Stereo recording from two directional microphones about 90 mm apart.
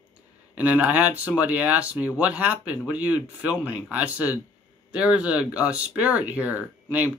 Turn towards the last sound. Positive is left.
turn(degrees=-20)  # may be behind; listen again after turning